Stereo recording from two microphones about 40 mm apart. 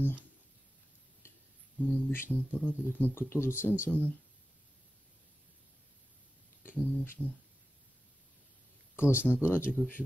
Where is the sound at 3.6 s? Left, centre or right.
Right.